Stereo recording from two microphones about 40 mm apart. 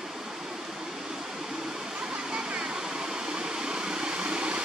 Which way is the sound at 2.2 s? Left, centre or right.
Centre.